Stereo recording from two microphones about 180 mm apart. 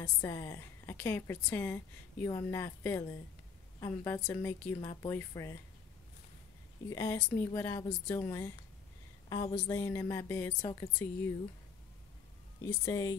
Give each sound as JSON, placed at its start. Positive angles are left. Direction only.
{"t": 0.0, "sound": "a woman's voice", "side_deg": 15}
{"t": 6.9, "sound": "a woman's voice", "side_deg": 20}
{"t": 12.8, "sound": "speech", "side_deg": 20}